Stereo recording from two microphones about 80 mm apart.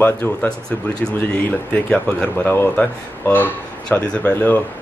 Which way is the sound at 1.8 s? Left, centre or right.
Left.